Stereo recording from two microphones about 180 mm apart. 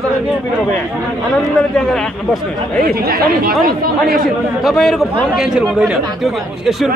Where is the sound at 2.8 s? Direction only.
55° right (ahead or behind).